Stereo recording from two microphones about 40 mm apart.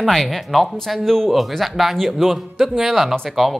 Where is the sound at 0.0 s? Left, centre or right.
Centre.